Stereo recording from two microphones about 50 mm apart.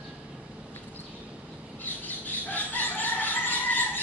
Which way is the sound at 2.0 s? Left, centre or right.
Left.